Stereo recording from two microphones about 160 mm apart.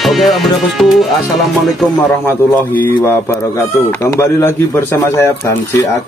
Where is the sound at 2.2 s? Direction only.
10° left (ahead or behind).